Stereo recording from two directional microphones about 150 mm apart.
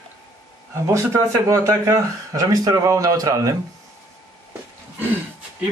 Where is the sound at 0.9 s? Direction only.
20° right (ahead or behind).